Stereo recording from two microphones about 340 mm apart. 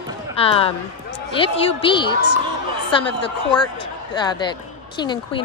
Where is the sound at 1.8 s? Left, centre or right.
Centre.